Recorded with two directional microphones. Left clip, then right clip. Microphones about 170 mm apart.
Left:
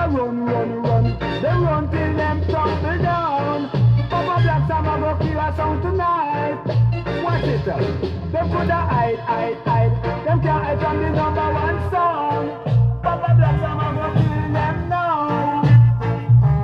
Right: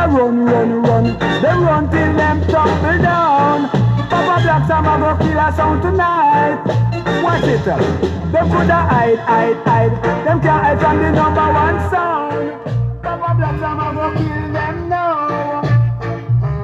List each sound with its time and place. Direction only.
0.1 s music: 40° right (ahead or behind)